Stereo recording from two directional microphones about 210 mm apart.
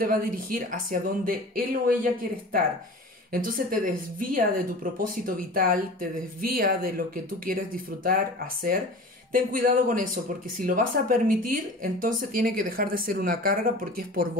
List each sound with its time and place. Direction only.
0.0 s speech: 40° right (ahead or behind)
3.3 s a woman's voice: 40° right (ahead or behind)
9.3 s speech: 40° right (ahead or behind)